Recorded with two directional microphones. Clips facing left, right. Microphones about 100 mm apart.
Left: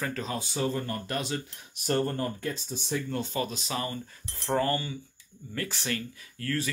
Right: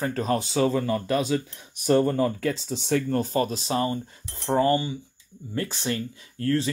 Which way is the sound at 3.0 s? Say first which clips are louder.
Right 7 dB; 40° right (ahead or behind).